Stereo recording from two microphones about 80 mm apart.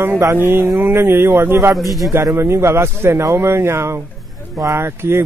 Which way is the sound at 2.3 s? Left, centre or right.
Right.